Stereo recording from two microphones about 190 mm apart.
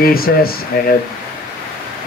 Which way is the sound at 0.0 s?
50° left (ahead or behind).